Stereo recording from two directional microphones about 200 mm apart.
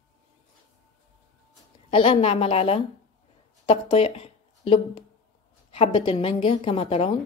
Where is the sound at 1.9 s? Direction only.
25° left (ahead or behind).